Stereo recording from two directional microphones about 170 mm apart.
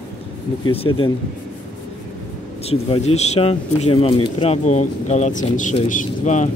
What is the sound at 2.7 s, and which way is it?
Speech, 40° left (ahead or behind).